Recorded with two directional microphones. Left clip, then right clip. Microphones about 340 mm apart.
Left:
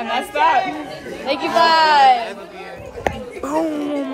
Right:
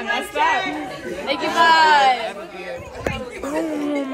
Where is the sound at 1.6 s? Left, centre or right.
Left.